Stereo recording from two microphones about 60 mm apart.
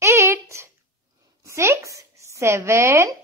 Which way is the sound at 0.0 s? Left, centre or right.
Right.